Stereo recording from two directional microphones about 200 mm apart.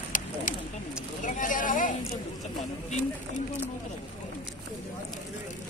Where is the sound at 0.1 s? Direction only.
40° left (ahead or behind).